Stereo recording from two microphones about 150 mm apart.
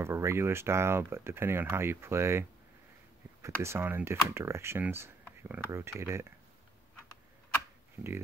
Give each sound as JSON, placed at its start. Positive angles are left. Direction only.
{"t": 0.0, "sound": "speech", "side_deg": -15}
{"t": 3.4, "sound": "speech", "side_deg": -15}